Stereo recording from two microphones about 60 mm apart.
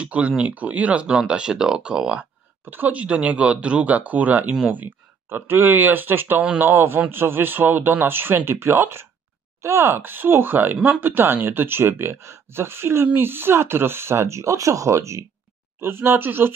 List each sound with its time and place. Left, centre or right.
0.0 s speech: right
2.6 s speech: right
5.3 s speech: right
9.6 s speech: right
9.9 s speech: right
15.8 s speech: right